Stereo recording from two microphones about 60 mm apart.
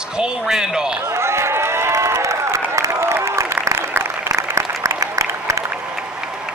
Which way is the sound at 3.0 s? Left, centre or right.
Right.